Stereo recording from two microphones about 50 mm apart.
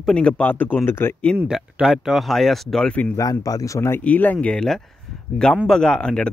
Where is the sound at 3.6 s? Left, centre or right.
Left.